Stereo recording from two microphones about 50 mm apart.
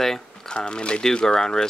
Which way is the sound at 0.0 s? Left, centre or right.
Centre.